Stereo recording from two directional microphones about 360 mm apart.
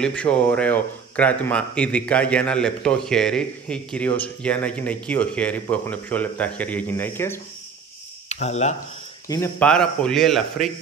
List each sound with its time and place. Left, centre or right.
0.0 s speech: centre
8.3 s speech: centre
9.3 s speech: centre